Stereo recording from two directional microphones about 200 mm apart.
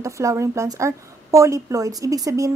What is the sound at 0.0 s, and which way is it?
A woman's voice, 15° right (ahead or behind).